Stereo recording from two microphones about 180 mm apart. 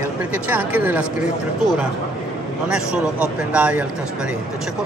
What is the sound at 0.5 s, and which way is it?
Speech, 10° right (ahead or behind).